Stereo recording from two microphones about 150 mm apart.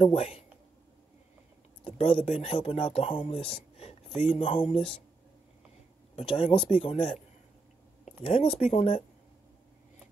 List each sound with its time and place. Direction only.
0.0 s speech: 45° left (ahead or behind)
1.9 s speech: 40° left (ahead or behind)
6.1 s speech: 40° left (ahead or behind)
8.2 s speech: 40° left (ahead or behind)